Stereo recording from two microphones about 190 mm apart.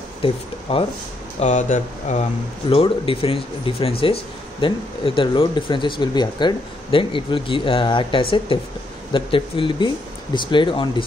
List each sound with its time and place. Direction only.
0.2 s speech: 30° left (ahead or behind)
1.4 s speech: 40° left (ahead or behind)
2.7 s speech: 30° left (ahead or behind)